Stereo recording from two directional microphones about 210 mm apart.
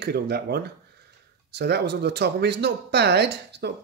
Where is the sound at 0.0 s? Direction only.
50° right (ahead or behind).